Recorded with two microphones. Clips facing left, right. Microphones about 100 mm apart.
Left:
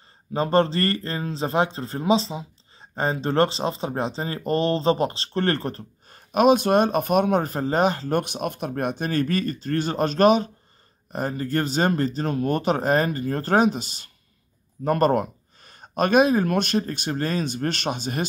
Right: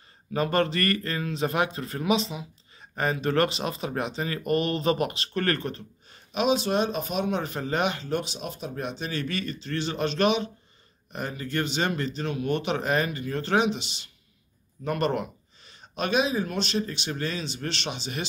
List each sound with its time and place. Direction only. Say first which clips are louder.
0.3 s a man's voice: left 4 dB; 30° left (ahead or behind)
8.2 s a man's voice: left 7 dB; 55° left (ahead or behind)